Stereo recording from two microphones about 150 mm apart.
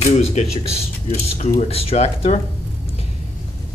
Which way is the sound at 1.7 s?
40° left (ahead or behind).